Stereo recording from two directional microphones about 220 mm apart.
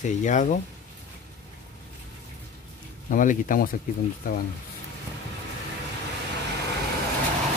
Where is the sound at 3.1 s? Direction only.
35° left (ahead or behind).